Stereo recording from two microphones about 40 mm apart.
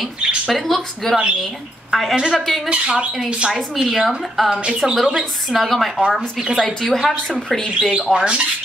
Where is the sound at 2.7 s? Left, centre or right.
Right.